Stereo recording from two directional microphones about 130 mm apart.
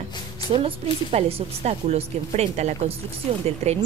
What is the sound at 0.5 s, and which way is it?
A woman's voice, 45° right (ahead or behind).